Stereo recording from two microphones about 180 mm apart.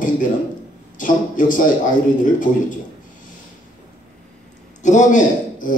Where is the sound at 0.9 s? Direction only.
45° left (ahead or behind).